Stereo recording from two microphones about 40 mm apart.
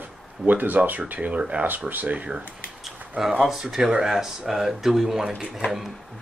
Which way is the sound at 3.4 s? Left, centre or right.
Centre.